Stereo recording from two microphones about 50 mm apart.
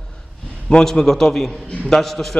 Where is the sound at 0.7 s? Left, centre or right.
Centre.